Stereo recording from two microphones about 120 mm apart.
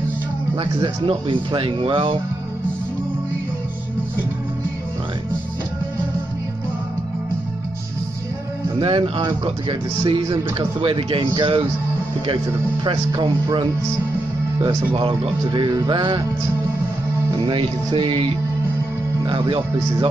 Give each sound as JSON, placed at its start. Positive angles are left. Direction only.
{"t": 0.6, "sound": "speech", "side_deg": -45}
{"t": 8.7, "sound": "speech", "side_deg": -50}
{"t": 12.8, "sound": "speech", "side_deg": -45}
{"t": 14.9, "sound": "speech", "side_deg": -45}
{"t": 17.5, "sound": "speech", "side_deg": -45}
{"t": 19.2, "sound": "speech", "side_deg": -45}